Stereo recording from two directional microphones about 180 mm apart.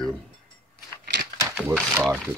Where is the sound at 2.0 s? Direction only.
5° right (ahead or behind).